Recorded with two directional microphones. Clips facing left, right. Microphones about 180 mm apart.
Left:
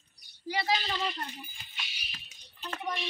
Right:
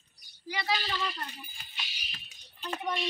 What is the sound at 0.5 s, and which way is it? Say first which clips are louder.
Speech: left 2 dB; 30° left (ahead or behind).